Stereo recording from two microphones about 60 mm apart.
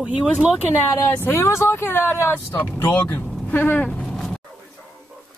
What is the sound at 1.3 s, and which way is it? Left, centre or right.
Speech, left.